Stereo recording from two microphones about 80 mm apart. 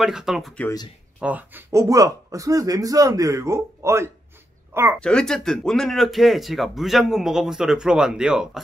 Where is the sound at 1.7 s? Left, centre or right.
Right.